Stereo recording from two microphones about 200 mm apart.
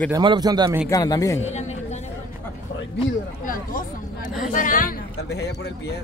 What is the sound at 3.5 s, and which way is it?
Speech, 40° left (ahead or behind).